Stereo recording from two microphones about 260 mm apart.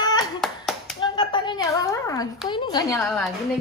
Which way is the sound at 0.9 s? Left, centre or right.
Centre.